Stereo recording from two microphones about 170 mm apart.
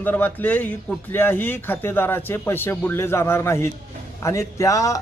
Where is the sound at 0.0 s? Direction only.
10° left (ahead or behind).